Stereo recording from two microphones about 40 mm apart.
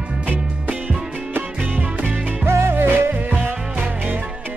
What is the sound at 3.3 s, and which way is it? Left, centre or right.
Music, right.